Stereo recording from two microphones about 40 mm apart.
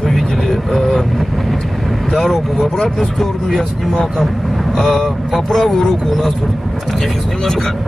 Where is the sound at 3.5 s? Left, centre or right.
Centre.